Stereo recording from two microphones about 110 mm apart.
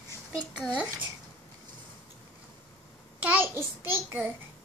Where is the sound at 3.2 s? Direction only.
20° right (ahead or behind).